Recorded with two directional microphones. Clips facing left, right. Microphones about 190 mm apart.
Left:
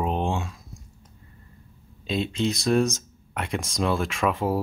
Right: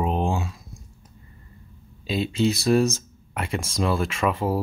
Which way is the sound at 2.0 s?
5° right (ahead or behind).